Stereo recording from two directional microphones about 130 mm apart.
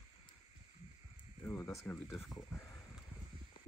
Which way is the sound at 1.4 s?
20° left (ahead or behind).